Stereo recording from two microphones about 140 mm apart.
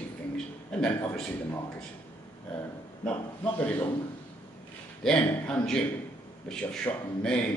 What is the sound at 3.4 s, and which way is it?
Speech, 10° left (ahead or behind).